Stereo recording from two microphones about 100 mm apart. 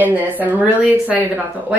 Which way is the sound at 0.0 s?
15° right (ahead or behind).